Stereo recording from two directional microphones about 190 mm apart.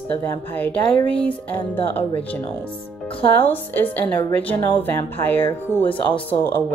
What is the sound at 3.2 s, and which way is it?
A woman's voice, 10° left (ahead or behind).